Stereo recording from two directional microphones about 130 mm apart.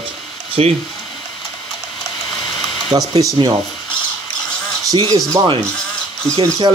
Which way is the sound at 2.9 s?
30° right (ahead or behind).